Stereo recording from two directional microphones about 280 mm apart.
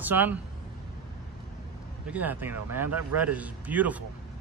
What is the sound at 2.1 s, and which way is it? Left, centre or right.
A man's voice, centre.